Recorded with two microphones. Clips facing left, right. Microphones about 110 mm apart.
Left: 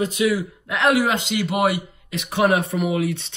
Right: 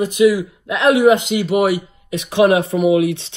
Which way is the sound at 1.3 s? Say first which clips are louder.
Right 4 dB; 25° right (ahead or behind).